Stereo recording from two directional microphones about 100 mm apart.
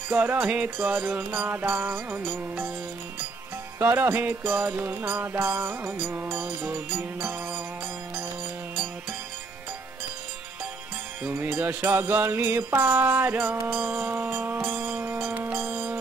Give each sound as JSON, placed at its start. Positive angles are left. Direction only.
{"t": 0.2, "sound": "music", "side_deg": -15}
{"t": 3.8, "sound": "music", "side_deg": -20}
{"t": 11.2, "sound": "music", "side_deg": -15}